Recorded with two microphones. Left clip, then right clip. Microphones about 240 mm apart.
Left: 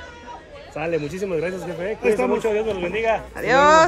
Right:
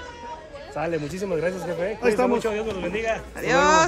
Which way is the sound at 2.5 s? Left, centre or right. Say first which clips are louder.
Left 4 dB; left.